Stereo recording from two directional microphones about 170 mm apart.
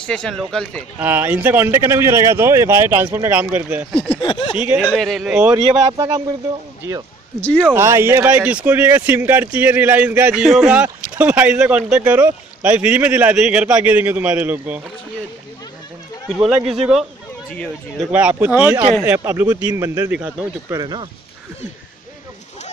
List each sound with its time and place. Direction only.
0.0 s speech: 5° left (ahead or behind)
0.9 s speech: 10° right (ahead or behind)
4.2 s speech: 25° left (ahead or behind)
4.6 s speech: 10° right (ahead or behind)
5.6 s speech: 35° right (ahead or behind)
5.9 s speech: 20° right (ahead or behind)
7.3 s speech: 5° left (ahead or behind)
7.6 s speech: 15° right (ahead or behind)
16.3 s a man's voice: 5° right (ahead or behind)
18.1 s speech: 10° right (ahead or behind)
20.7 s speech: 25° right (ahead or behind)